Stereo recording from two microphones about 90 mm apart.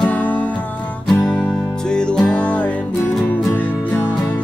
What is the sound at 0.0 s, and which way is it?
Music, 15° left (ahead or behind).